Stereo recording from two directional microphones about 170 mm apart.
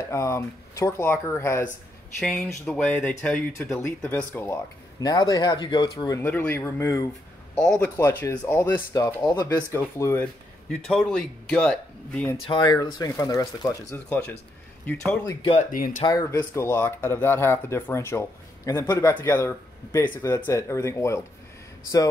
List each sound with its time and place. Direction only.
0.1 s speech: 15° left (ahead or behind)
2.1 s speech: centre (ahead or behind)
5.0 s speech: 20° left (ahead or behind)
7.5 s speech: 5° left (ahead or behind)
8.0 s speech: 15° left (ahead or behind)
10.7 s speech: centre (ahead or behind)
12.4 s speech: 25° left (ahead or behind)
14.0 s speech: 5° left (ahead or behind)
15.5 s speech: 55° left (ahead or behind)
16.0 s speech: 20° left (ahead or behind)